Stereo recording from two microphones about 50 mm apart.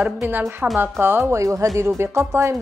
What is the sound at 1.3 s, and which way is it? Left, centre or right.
Speech, right.